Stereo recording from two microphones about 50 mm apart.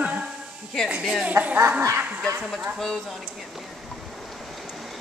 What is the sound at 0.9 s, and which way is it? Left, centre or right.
Speech, right.